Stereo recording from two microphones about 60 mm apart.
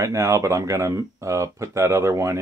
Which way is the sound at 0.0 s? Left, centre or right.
Right.